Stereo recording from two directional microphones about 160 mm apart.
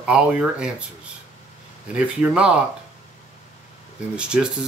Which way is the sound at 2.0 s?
5° right (ahead or behind).